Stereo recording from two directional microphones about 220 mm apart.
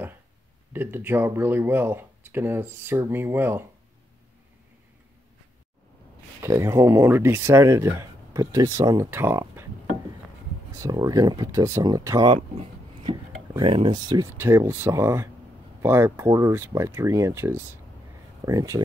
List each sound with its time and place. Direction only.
0.7 s speech: 10° right (ahead or behind)
6.4 s speech: 10° right (ahead or behind)
10.7 s speech: 15° right (ahead or behind)